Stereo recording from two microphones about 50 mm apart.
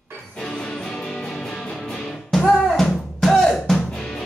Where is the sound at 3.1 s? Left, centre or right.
Centre.